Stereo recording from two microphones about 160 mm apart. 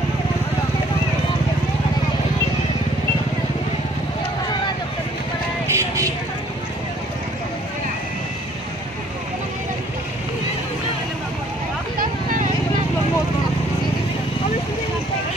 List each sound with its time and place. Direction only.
5.7 s vehicle: 20° right (ahead or behind)
12.0 s vehicle: 60° right (ahead or behind)